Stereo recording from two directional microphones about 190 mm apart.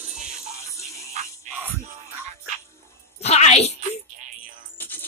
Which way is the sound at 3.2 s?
35° left (ahead or behind).